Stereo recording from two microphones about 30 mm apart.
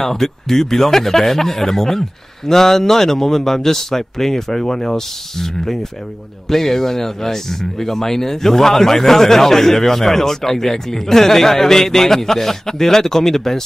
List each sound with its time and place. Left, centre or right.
0.0 s speech: centre